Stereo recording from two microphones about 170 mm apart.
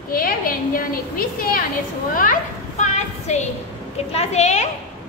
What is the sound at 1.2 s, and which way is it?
Speech, 60° left (ahead or behind).